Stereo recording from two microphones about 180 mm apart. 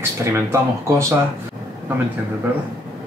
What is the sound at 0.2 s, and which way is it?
Speech, 15° right (ahead or behind).